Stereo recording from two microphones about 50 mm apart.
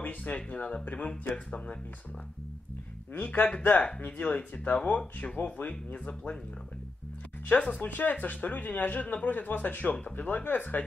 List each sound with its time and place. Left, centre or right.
0.0 s speech: left
3.1 s speech: left
7.5 s speech: left
7.9 s speech: left